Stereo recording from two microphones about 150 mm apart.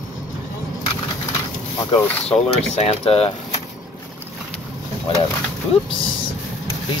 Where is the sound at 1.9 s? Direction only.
40° left (ahead or behind).